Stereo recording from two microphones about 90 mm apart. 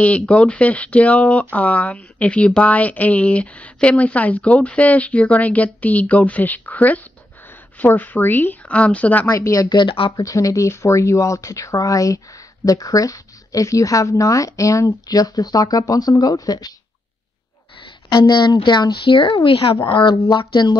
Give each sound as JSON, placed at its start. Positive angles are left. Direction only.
{"t": 0.0, "sound": "speech", "side_deg": 15}
{"t": 9.3, "sound": "speech", "side_deg": 40}
{"t": 9.7, "sound": "speech", "side_deg": 60}
{"t": 10.1, "sound": "speech", "side_deg": 40}
{"t": 18.1, "sound": "speech", "side_deg": 55}